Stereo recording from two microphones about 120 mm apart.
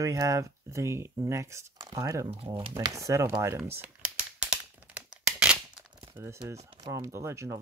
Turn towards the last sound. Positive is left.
turn(degrees=-25)  # may be behind; listen again after turning